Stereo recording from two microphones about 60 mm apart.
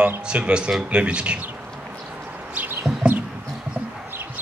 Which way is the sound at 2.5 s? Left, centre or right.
Right.